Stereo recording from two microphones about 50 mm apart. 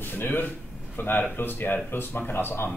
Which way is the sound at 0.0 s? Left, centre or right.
Left.